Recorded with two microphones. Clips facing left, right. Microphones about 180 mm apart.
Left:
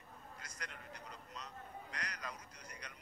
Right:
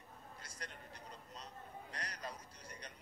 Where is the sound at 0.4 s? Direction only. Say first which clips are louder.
Even; 30° right (ahead or behind).